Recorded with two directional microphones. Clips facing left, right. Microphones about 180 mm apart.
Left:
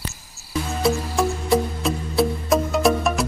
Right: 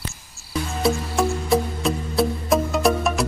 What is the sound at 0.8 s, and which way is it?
Music, centre (ahead or behind).